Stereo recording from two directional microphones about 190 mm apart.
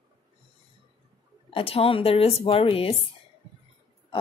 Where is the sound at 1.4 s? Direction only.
30° left (ahead or behind).